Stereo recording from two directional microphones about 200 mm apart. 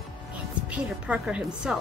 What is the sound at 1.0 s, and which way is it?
Speech, 5° right (ahead or behind).